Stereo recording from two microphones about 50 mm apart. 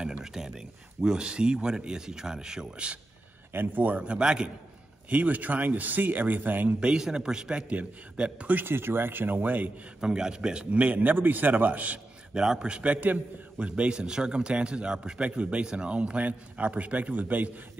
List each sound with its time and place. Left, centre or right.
0.0 s speech: centre
3.5 s a man's voice: right; by 4.5 s centre
5.1 s speech: right
6.8 s a man's voice: centre
8.6 s speech: right
9.9 s a man's voice: centre; by 11.1 s right
11.1 s speech: right
12.4 s a man's voice: centre; by 17.5 s right